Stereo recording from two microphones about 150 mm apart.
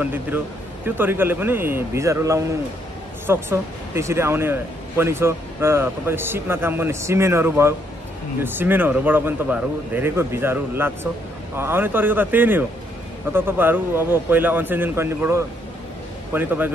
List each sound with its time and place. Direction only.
0.0 s speech: 10° right (ahead or behind)